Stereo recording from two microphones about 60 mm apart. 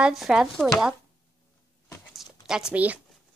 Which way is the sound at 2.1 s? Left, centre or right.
Centre.